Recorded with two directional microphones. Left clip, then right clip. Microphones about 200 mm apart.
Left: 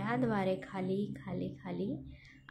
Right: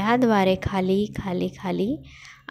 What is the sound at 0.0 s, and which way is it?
A woman's voice, 40° right (ahead or behind).